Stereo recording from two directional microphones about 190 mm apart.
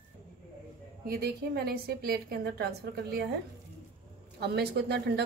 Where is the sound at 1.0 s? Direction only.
55° right (ahead or behind).